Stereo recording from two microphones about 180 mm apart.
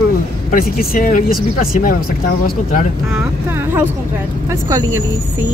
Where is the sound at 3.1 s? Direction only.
15° right (ahead or behind).